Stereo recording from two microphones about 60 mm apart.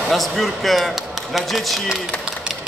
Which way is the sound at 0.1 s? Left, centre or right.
Centre.